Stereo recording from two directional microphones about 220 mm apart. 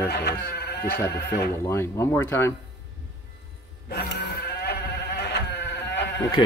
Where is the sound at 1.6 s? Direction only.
10° left (ahead or behind).